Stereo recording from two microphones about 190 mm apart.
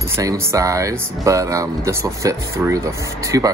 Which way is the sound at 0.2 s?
15° right (ahead or behind).